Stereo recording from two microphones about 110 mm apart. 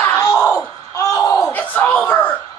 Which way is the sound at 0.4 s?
5° left (ahead or behind).